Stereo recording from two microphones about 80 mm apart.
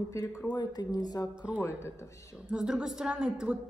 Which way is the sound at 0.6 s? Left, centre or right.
Left.